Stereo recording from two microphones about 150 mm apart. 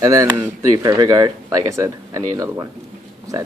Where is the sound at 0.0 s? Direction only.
20° right (ahead or behind).